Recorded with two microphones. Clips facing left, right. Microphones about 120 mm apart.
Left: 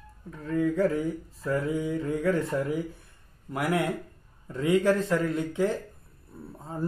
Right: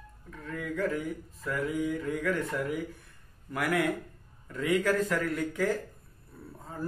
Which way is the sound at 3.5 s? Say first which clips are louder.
Left 1 dB; 20° left (ahead or behind).